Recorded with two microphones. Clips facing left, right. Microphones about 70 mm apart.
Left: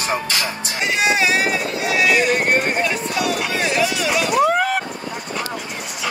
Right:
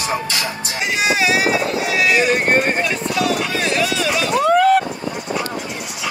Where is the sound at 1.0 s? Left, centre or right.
Centre.